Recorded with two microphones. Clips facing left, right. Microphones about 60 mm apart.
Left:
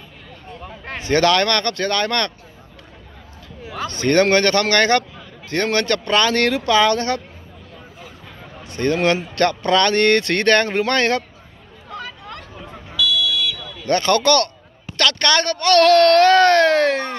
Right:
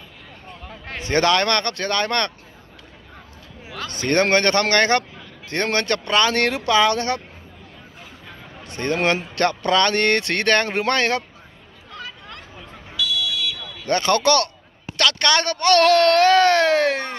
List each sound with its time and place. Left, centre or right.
1.0 s speech: right
3.9 s speech: right
8.6 s speech: right
13.8 s speech: centre